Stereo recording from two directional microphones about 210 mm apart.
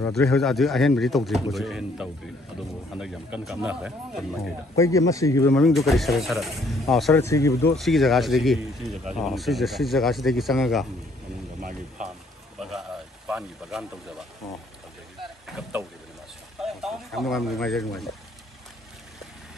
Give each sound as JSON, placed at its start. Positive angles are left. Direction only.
{"t": 0.0, "sound": "speech", "side_deg": 5}
{"t": 4.7, "sound": "speech", "side_deg": 15}
{"t": 5.5, "sound": "speech", "side_deg": 0}
{"t": 7.2, "sound": "speech", "side_deg": 15}
{"t": 7.7, "sound": "speech", "side_deg": 0}
{"t": 12.5, "sound": "a sound", "side_deg": 0}
{"t": 15.4, "sound": "speech", "side_deg": 0}